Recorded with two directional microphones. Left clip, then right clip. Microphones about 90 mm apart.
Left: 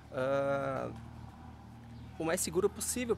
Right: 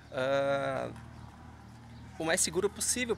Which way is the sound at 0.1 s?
30° left (ahead or behind).